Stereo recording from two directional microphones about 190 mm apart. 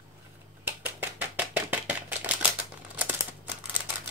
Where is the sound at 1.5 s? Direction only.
10° right (ahead or behind).